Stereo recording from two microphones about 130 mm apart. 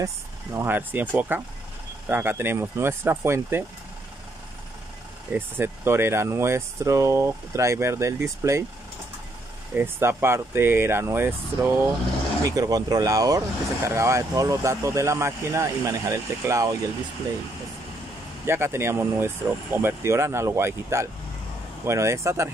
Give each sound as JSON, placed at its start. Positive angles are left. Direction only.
{"t": 0.0, "sound": "speech", "side_deg": -20}
{"t": 5.3, "sound": "speech", "side_deg": -20}
{"t": 9.8, "sound": "speech", "side_deg": -20}
{"t": 12.4, "sound": "speech", "side_deg": -25}
{"t": 18.4, "sound": "speech", "side_deg": -20}